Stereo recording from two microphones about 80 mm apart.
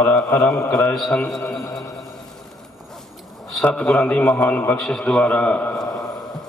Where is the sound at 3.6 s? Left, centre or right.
Centre.